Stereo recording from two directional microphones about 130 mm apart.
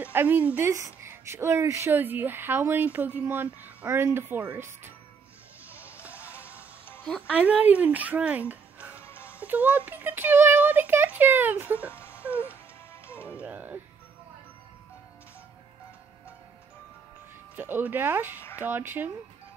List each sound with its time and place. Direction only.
0.0 s speech: 15° right (ahead or behind)
7.1 s speech: 5° right (ahead or behind)
9.0 s music: 20° left (ahead or behind)
9.4 s speech: 15° right (ahead or behind)
11.9 s music: 15° left (ahead or behind)
13.4 s music: 10° right (ahead or behind)
17.6 s speech: 15° right (ahead or behind)